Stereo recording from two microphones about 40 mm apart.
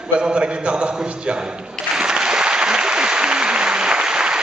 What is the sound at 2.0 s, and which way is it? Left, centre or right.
Applause, right.